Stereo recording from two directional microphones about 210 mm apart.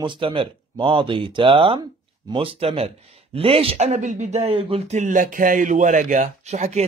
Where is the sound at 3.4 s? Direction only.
25° right (ahead or behind).